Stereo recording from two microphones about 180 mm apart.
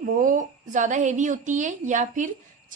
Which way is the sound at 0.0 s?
45° right (ahead or behind).